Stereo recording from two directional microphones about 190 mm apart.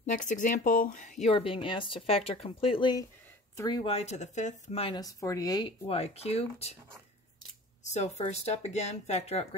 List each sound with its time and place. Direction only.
0.0 s speech: 40° left (ahead or behind)
5.0 s speech: 20° left (ahead or behind)
5.9 s speech: 30° left (ahead or behind)
7.9 s speech: 35° left (ahead or behind)